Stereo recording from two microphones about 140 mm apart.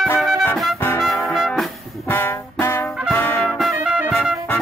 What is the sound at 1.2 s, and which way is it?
Music, centre (ahead or behind).